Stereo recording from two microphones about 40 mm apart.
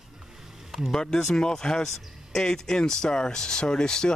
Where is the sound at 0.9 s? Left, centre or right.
Centre.